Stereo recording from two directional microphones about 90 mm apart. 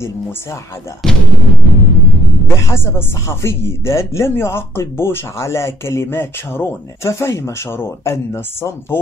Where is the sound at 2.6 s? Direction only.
30° left (ahead or behind).